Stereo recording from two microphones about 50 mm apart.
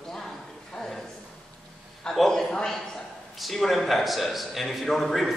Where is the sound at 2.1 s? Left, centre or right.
Centre.